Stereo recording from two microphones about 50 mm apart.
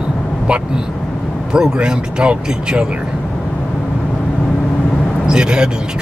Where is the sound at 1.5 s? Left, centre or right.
Centre.